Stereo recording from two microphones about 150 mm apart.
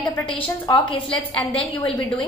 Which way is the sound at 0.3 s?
35° left (ahead or behind).